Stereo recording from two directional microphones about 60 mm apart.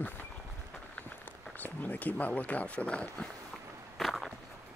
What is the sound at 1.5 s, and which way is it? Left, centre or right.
Speech, left.